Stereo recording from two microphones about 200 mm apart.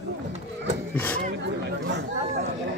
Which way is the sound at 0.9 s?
10° left (ahead or behind).